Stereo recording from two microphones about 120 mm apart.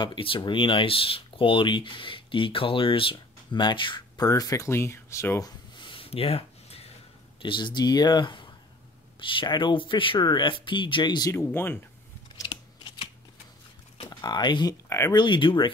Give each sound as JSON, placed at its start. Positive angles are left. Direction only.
{"t": 0.0, "sound": "speech", "side_deg": 45}
{"t": 5.8, "sound": "a sound", "side_deg": 45}
{"t": 7.4, "sound": "speech", "side_deg": 40}
{"t": 11.3, "sound": "speech", "side_deg": 20}
{"t": 12.4, "sound": "scissors", "side_deg": 45}
{"t": 14.0, "sound": "speech", "side_deg": 35}
{"t": 14.9, "sound": "speech", "side_deg": 25}
{"t": 15.1, "sound": "speech", "side_deg": 40}